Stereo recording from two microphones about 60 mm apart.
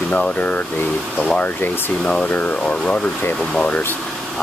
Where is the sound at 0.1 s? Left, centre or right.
Left.